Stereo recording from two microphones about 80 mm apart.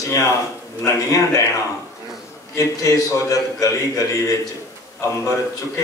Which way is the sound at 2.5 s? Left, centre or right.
Left.